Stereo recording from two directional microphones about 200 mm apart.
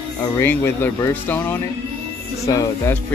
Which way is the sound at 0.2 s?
10° left (ahead or behind).